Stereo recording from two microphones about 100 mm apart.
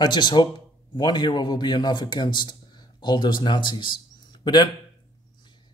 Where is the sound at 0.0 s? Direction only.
50° left (ahead or behind).